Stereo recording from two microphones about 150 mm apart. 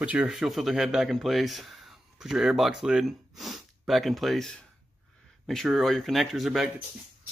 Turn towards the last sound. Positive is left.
turn(degrees=0)  # may be behind; listen again after turning